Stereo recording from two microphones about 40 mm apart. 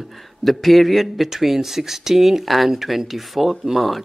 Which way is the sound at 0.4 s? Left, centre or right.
Centre.